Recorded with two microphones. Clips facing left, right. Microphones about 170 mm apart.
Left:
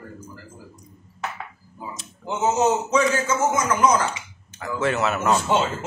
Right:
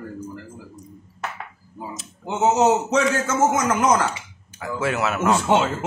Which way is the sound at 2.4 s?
70° right (ahead or behind).